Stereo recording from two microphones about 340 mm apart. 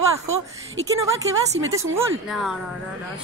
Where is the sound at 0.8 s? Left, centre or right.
Centre.